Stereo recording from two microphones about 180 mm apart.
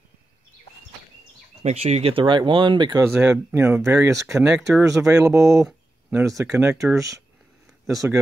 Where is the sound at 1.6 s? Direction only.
35° right (ahead or behind).